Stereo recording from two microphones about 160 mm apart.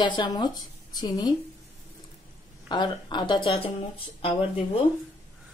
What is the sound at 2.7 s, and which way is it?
Speech, 30° left (ahead or behind).